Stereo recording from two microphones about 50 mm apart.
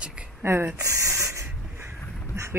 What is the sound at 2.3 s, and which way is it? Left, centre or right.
Speech, right.